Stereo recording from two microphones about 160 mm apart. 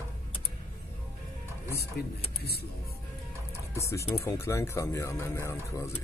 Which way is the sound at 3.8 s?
20° left (ahead or behind).